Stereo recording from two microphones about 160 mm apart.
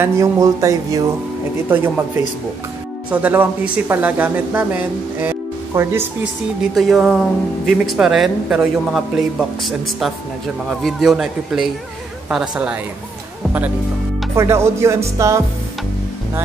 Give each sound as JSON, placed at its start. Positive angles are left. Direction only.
{"t": 0.0, "sound": "speech", "side_deg": -20}
{"t": 6.7, "sound": "speech", "side_deg": 0}
{"t": 14.3, "sound": "speech", "side_deg": -15}